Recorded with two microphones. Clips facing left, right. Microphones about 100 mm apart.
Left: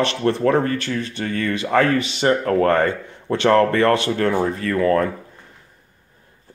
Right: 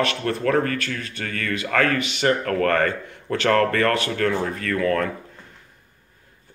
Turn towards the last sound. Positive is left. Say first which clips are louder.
# left 4 dB
turn(degrees=25)  # may be behind; listen again after turning